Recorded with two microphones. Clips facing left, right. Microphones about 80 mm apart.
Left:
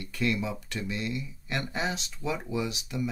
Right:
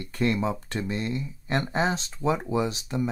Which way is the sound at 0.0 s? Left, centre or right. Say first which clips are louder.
Right 4 dB; right.